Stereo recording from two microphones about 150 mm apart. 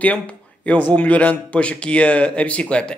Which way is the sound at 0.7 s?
10° left (ahead or behind).